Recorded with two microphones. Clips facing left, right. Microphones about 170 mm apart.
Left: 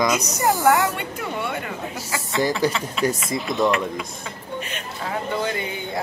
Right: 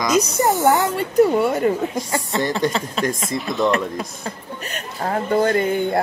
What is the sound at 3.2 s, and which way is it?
Speech, centre (ahead or behind).